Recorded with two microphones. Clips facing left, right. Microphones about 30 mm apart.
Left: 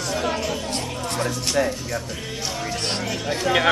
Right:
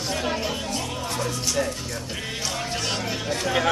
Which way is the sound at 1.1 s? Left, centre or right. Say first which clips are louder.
Left 4 dB; left.